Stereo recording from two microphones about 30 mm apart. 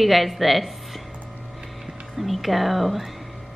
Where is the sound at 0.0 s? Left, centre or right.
Centre.